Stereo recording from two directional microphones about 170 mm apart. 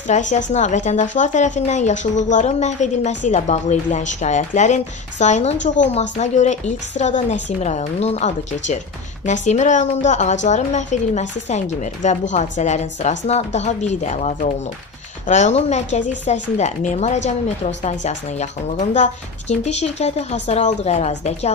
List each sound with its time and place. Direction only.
0.1 s a woman's voice: 45° left (ahead or behind)